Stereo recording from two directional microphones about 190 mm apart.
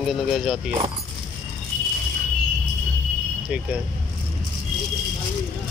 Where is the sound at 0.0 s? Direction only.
Centre (ahead or behind).